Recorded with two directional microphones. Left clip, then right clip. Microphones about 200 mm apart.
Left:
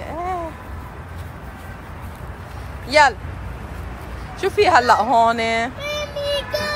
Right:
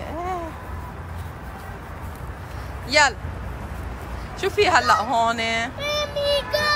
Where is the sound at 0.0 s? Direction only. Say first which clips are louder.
Left 3 dB; 15° right (ahead or behind).